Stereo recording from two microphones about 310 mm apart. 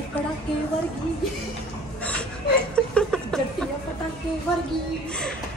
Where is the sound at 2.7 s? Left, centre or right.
Centre.